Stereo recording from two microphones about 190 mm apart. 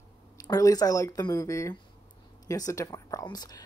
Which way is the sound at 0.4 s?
20° left (ahead or behind).